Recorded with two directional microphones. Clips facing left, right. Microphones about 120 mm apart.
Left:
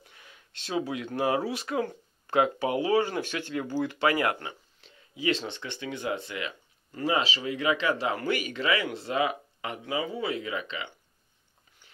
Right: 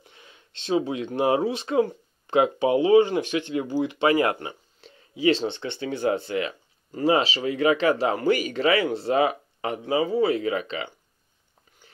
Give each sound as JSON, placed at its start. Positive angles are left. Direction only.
{"t": 0.1, "sound": "speech", "side_deg": -25}